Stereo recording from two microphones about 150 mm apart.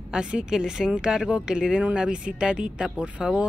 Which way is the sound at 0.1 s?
5° right (ahead or behind).